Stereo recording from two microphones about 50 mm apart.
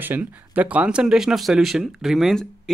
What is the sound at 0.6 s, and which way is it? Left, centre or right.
Speech, right.